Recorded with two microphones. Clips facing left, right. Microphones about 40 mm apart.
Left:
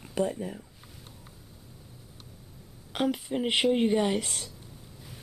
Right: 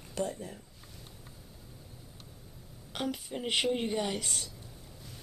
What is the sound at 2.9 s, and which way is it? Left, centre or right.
Speech, centre.